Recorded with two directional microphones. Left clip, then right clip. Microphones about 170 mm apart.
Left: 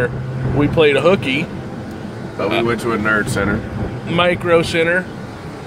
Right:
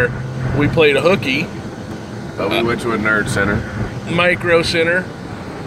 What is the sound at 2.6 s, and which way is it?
Speech, 35° left (ahead or behind).